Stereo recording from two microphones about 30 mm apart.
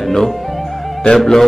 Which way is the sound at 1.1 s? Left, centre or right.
Centre.